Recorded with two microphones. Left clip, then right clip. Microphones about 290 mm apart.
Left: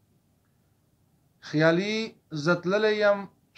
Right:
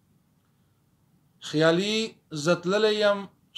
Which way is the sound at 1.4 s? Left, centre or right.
Right.